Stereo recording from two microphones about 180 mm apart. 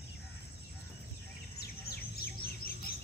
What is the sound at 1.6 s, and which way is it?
Bird, 60° left (ahead or behind).